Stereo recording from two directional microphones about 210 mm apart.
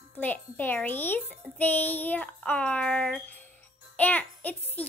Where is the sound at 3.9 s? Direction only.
10° left (ahead or behind).